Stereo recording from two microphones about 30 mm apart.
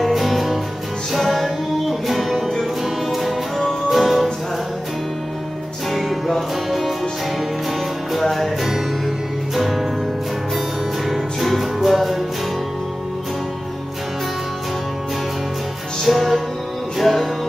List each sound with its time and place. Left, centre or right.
0.0 s music: centre
5.9 s music: centre
8.1 s music: centre
9.6 s music: centre
11.1 s music: centre
16.1 s music: centre